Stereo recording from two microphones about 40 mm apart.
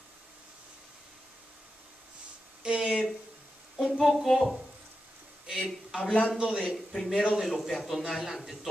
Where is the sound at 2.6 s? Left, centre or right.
Right.